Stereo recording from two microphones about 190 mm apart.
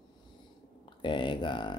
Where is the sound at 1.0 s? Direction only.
25° left (ahead or behind).